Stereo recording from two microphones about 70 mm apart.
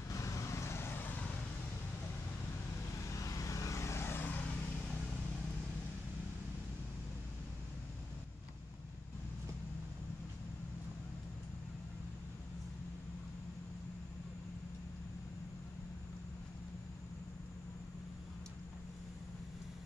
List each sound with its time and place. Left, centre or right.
0.1 s vehicle: left
3.0 s vehicle: left